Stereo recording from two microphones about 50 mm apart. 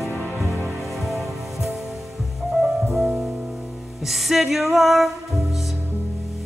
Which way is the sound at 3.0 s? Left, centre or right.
Centre.